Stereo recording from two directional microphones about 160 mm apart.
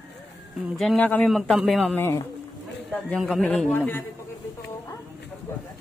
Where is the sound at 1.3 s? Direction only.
Centre (ahead or behind).